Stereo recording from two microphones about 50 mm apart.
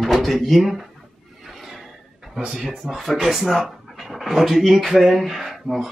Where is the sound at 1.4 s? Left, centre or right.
Centre.